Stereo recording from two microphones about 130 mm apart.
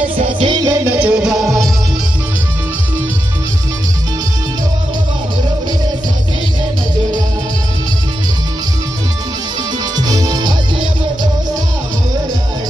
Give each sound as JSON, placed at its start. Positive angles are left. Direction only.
{"t": 0.4, "sound": "music", "side_deg": -35}
{"t": 1.0, "sound": "music", "side_deg": -5}
{"t": 9.9, "sound": "music", "side_deg": -30}